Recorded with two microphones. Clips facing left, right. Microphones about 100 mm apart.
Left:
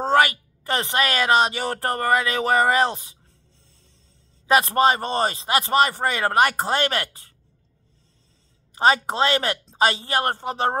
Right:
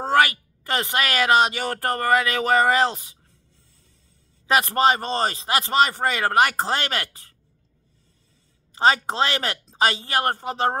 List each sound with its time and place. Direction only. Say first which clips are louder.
0.0 s a woman's voice: left 1 dB; 25° left (ahead or behind)
4.5 s a woman's voice: left 1 dB; 20° left (ahead or behind)
8.8 s a woman's voice: left 1 dB; 20° left (ahead or behind)